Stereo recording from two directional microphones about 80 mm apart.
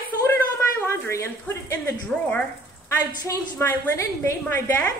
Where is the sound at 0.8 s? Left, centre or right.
Left.